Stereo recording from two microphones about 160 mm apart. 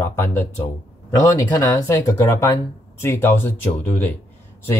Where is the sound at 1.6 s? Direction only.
20° left (ahead or behind).